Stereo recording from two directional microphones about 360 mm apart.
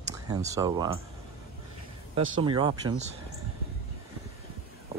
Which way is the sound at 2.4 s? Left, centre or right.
Centre.